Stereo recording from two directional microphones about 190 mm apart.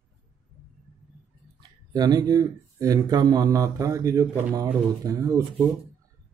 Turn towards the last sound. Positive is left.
turn(degrees=-20)  # may be behind; listen again after turning